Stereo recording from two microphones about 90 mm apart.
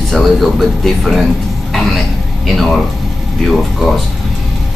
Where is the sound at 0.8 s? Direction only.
Centre (ahead or behind).